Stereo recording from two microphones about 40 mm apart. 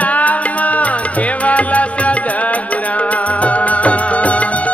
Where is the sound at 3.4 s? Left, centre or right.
Left.